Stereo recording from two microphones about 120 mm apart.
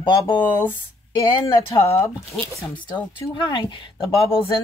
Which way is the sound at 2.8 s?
40° left (ahead or behind).